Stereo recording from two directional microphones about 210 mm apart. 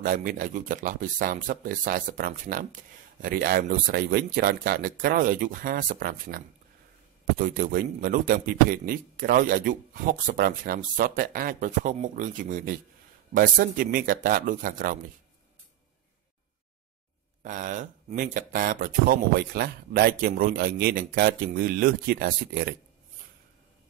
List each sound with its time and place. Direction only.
0.0 s speech: 40° right (ahead or behind)
17.4 s speech: 40° right (ahead or behind)